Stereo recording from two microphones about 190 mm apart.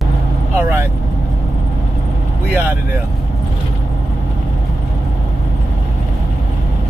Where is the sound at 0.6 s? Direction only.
15° right (ahead or behind).